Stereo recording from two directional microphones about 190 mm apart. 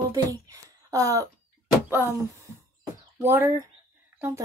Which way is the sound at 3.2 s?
10° right (ahead or behind).